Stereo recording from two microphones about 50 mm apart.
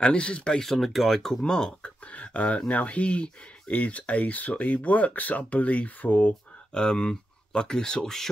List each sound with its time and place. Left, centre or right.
0.0 s speech: left
0.7 s speech: centre
1.8 s speech: left
6.7 s speech: centre